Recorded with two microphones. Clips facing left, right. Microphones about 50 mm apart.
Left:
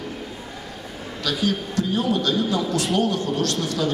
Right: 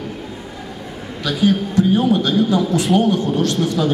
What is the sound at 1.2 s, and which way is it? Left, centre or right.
A man's voice, right.